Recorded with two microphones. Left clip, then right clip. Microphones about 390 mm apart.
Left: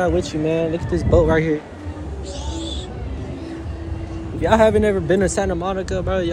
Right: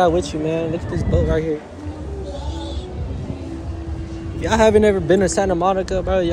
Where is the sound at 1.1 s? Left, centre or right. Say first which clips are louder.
Left 5 dB; centre.